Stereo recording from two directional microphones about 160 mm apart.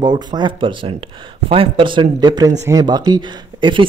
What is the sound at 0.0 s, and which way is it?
Speech, 25° right (ahead or behind).